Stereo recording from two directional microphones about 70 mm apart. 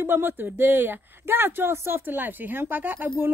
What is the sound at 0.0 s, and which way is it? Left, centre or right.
Speech, right.